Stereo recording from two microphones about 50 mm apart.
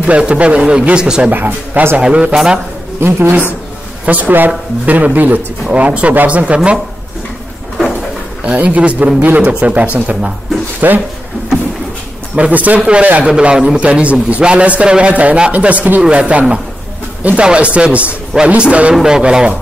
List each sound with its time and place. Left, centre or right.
0.0 s a man's voice: right
1.3 s speech: right
2.0 s a man's voice: right
2.3 s speech: centre
3.0 s speech: right
4.0 s a man's voice: right
8.5 s a man's voice: right
10.8 s speech: right
12.4 s speech: right
13.2 s a man's voice: right